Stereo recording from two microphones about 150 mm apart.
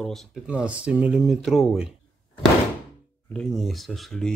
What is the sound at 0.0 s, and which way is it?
A man's voice, centre (ahead or behind).